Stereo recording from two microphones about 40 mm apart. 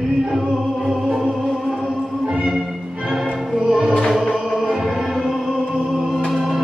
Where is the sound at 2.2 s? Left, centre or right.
Right.